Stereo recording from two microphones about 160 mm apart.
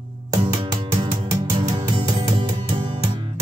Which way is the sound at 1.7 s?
30° right (ahead or behind).